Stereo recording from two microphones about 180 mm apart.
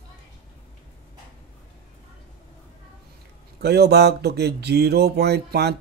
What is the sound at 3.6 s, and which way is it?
Speech, 65° right (ahead or behind).